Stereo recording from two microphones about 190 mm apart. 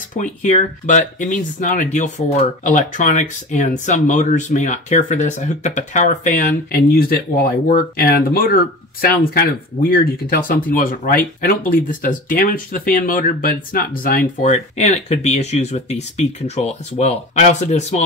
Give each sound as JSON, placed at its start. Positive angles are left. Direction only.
{"t": 0.2, "sound": "speech", "side_deg": 40}
{"t": 7.6, "sound": "speech", "side_deg": 50}